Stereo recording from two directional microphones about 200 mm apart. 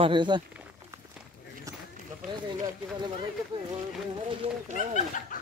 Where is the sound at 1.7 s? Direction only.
15° right (ahead or behind).